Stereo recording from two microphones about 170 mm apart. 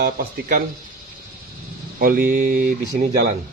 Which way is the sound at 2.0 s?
60° right (ahead or behind).